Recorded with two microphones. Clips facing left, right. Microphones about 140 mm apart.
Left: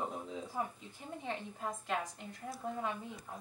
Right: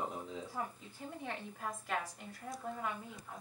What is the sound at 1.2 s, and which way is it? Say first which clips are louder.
Speech: left 3 dB; 20° left (ahead or behind).